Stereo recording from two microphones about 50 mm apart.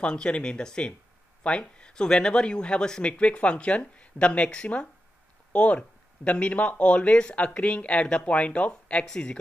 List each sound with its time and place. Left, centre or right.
0.0 s speech: centre
9.0 s speech: centre